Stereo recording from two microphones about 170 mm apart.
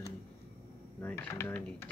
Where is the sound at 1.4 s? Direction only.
5° left (ahead or behind).